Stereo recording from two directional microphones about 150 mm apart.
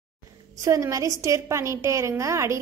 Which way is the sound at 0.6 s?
20° right (ahead or behind).